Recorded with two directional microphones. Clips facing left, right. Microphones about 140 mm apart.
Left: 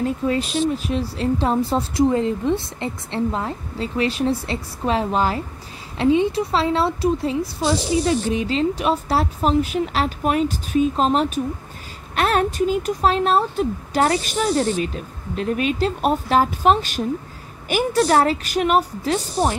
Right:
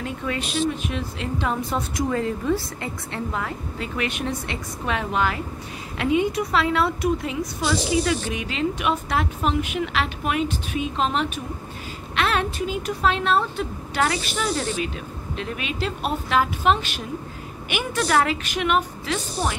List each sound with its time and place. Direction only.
0.0 s a woman's voice: 35° left (ahead or behind)